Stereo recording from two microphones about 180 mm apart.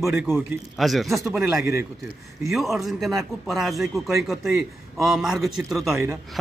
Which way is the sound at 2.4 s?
Centre (ahead or behind).